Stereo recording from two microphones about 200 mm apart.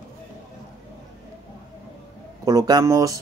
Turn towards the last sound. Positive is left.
turn(degrees=-15)  # may be behind; listen again after turning